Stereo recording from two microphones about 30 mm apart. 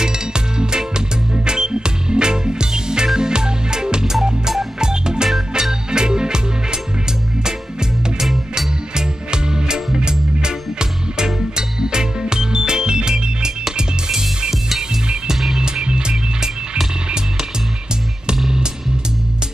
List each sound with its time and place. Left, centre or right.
0.0 s music: right
8.2 s music: centre
8.9 s music: right
15.6 s music: right